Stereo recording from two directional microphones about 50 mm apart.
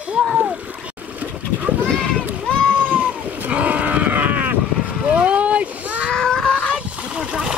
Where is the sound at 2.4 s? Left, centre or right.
Centre.